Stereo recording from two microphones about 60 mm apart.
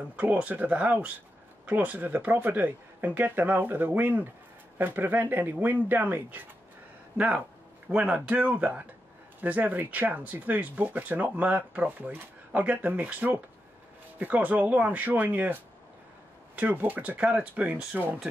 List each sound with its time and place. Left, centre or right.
0.1 s speech: right
7.2 s speech: right